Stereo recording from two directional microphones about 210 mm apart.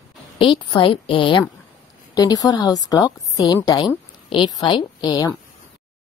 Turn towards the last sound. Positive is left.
turn(degrees=20)  # may be behind; listen again after turning